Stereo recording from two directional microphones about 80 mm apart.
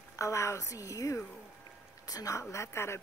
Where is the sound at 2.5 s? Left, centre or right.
Left.